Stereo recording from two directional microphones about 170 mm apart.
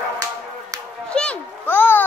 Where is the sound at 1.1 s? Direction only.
5° left (ahead or behind).